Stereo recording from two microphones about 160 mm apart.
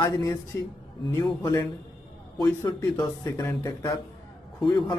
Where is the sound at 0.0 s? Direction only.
20° left (ahead or behind).